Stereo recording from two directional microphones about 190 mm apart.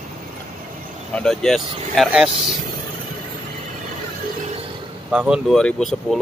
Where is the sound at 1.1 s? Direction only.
5° left (ahead or behind).